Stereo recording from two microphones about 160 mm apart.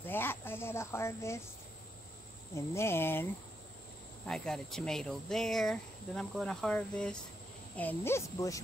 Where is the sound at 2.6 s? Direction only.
15° left (ahead or behind).